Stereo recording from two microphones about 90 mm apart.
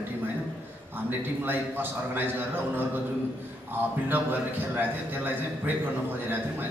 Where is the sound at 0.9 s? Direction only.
20° right (ahead or behind).